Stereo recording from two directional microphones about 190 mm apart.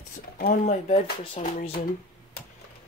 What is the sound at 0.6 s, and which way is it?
Speech, 35° left (ahead or behind).